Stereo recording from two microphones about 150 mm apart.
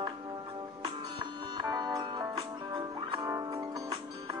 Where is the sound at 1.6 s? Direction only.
25° right (ahead or behind).